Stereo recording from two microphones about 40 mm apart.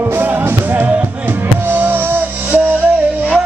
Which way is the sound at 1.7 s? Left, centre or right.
Right.